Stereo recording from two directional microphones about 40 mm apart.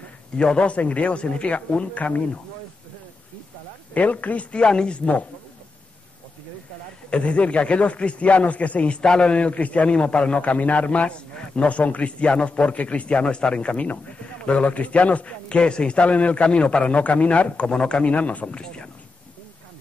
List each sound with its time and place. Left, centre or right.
0.4 s speech: left
0.7 s a man's voice: left
3.9 s a man's voice: left
4.6 s speech: left
7.1 s a man's voice: left
9.0 s a man's voice: centre
9.3 s a man's voice: left
17.6 s speech: centre
18.1 s a man's voice: left